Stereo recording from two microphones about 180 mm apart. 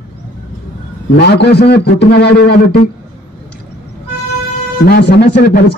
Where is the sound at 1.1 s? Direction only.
65° left (ahead or behind).